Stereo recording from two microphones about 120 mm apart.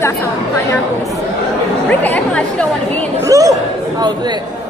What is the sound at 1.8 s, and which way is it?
Speech, 10° left (ahead or behind).